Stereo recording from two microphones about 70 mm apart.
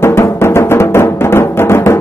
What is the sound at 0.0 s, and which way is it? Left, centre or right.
Music, left.